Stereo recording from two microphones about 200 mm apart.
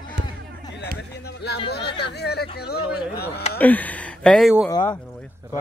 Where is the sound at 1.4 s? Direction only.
55° left (ahead or behind).